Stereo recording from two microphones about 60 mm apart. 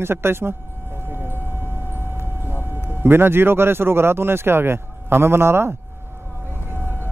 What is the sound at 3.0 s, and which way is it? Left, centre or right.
Speech, right.